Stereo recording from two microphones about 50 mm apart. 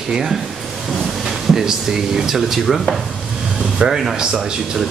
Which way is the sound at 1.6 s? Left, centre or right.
Centre.